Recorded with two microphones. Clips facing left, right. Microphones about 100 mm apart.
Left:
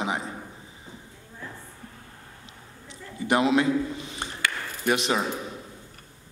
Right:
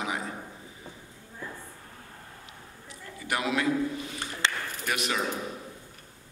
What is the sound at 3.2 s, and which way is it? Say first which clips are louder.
A man's voice: left 7 dB; 25° left (ahead or behind).